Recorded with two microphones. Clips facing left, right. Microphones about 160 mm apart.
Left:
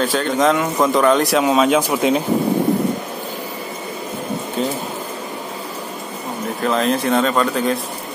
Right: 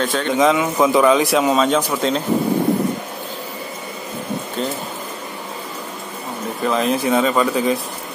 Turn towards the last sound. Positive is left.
turn(degrees=-5)  # may be behind; listen again after turning